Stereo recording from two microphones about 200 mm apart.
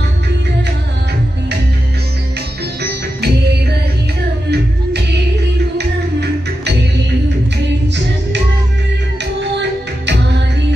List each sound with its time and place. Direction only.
2.8 s music: 55° right (ahead or behind)
4.5 s music: 55° right (ahead or behind)
9.2 s music: 60° right (ahead or behind)